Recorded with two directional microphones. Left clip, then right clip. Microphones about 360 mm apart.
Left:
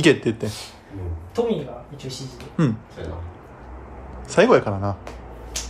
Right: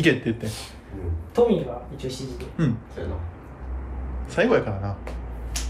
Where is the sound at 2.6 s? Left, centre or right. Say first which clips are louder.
Left 4 dB; centre.